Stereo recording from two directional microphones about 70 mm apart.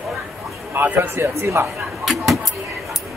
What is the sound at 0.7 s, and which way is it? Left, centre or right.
Speech, right.